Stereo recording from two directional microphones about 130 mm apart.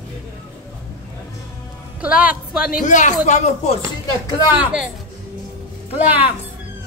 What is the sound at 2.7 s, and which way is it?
Speech, 70° left (ahead or behind).